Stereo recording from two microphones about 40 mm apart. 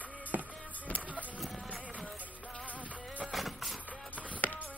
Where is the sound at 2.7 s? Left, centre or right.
Right.